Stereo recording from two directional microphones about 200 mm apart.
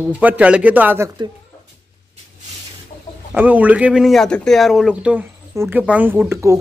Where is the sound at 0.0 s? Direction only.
10° right (ahead or behind).